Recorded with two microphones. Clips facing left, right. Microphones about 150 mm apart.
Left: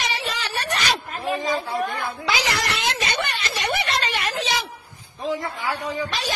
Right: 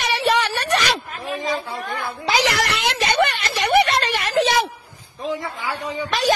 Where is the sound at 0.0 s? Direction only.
70° right (ahead or behind).